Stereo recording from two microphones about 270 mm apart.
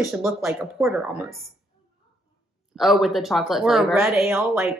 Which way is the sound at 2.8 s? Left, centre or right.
Centre.